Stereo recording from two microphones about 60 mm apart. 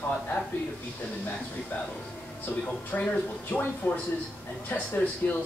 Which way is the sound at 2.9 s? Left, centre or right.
Left.